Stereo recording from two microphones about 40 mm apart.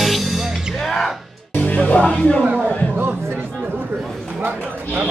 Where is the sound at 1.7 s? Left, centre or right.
Left.